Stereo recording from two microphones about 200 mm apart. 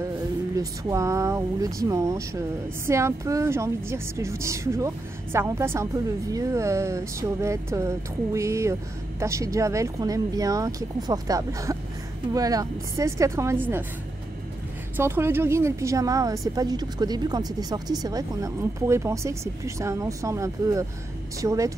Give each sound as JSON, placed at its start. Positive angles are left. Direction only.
{"t": 0.6, "sound": "a woman's voice", "side_deg": -15}
{"t": 15.0, "sound": "a woman's voice", "side_deg": -10}